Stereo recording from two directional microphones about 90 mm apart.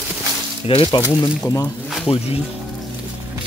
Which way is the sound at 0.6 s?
75° left (ahead or behind).